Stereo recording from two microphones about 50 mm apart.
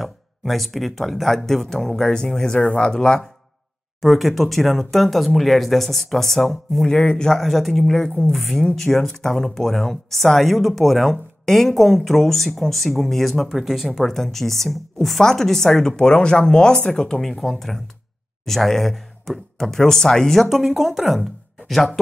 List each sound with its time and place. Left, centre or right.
0.0 s speech: centre
4.0 s speech: centre
7.0 s speech: left
7.2 s speech: centre
13.5 s speech: centre
17.2 s speech: centre
20.4 s speech: centre